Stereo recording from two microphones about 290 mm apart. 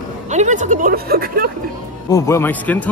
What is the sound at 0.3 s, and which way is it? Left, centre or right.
A woman's voice, right.